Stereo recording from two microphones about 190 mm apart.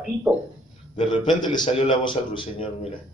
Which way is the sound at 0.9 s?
25° left (ahead or behind).